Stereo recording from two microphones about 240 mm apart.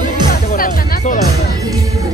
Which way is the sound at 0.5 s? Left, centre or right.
Left.